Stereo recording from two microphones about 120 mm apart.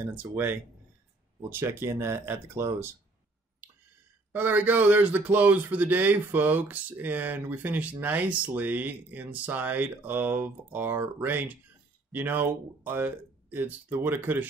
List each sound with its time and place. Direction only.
0.0 s speech: 15° right (ahead or behind)
4.3 s speech: 15° right (ahead or behind)